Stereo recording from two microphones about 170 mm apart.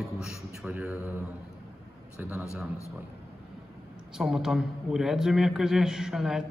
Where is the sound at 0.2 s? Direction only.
5° right (ahead or behind).